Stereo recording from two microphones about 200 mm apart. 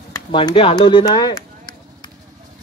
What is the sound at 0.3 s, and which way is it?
A man's voice, 25° left (ahead or behind).